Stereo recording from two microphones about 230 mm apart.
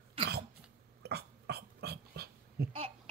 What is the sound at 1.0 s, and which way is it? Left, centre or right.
Dog, right.